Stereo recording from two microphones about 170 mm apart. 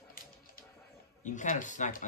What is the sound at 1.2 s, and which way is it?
Speech, 45° left (ahead or behind).